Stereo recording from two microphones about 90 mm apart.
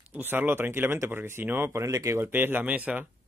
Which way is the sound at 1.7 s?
35° right (ahead or behind).